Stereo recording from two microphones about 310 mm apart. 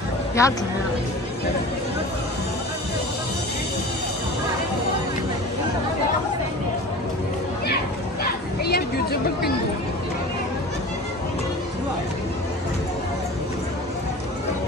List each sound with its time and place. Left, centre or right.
0.4 s a woman's voice: centre
7.6 s chatter: left